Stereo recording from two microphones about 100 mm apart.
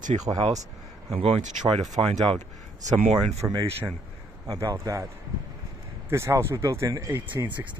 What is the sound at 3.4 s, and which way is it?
Speech, 20° right (ahead or behind).